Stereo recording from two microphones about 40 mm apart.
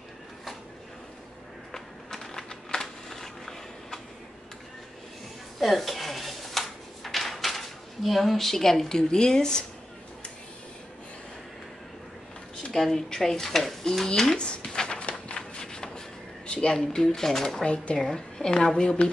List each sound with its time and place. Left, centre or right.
1.7 s typing: centre
5.6 s drawer open or close: centre
12.7 s speech: centre
14.0 s speech: centre
15.0 s a sound: left
16.4 s speech: centre